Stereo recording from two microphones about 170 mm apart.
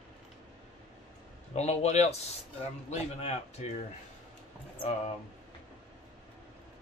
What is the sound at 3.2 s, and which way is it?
Speech, 40° left (ahead or behind).